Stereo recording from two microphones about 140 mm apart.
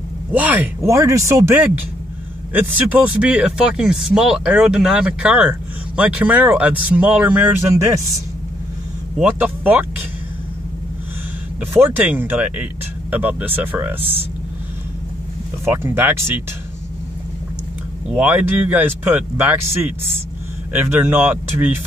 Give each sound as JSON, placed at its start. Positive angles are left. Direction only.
{"t": 0.3, "sound": "speech", "side_deg": -10}
{"t": 0.8, "sound": "speech", "side_deg": -20}
{"t": 9.2, "sound": "speech", "side_deg": -10}
{"t": 11.7, "sound": "speech", "side_deg": -15}
{"t": 15.6, "sound": "speech", "side_deg": -15}
{"t": 18.1, "sound": "speech", "side_deg": -10}
{"t": 20.7, "sound": "speech", "side_deg": -15}